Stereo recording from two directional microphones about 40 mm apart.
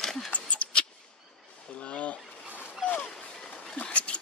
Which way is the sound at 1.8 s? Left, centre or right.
Left.